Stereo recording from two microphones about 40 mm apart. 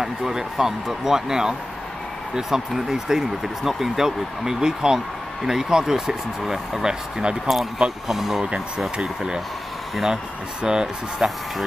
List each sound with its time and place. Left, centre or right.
0.0 s speech: centre
8.4 s speech: right
10.6 s speech: centre